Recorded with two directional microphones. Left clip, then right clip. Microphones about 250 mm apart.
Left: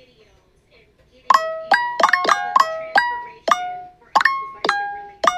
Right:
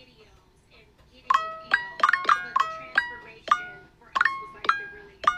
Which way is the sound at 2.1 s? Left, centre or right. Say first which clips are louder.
Left 6 dB; left.